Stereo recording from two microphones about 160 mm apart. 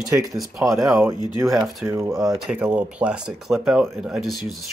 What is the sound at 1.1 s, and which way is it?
Speech, 25° left (ahead or behind).